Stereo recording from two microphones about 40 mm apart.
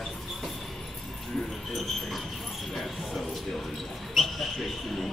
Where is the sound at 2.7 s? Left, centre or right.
Centre.